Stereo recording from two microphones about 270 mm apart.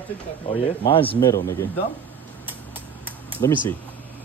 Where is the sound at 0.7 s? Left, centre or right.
Centre.